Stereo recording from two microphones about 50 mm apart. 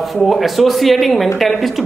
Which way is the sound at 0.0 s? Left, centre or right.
Centre.